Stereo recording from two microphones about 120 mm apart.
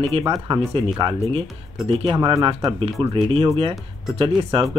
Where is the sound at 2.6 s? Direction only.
50° right (ahead or behind).